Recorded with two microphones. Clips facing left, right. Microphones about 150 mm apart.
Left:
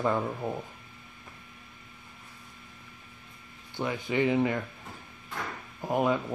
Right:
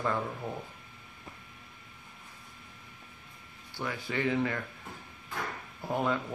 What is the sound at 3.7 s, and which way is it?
Speech, 20° left (ahead or behind).